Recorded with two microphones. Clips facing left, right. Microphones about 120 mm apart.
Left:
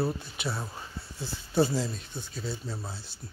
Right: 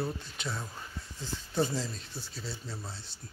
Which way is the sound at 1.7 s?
5° left (ahead or behind).